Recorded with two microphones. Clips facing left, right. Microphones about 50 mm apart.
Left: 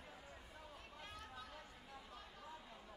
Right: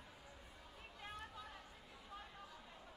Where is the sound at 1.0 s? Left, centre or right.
Centre.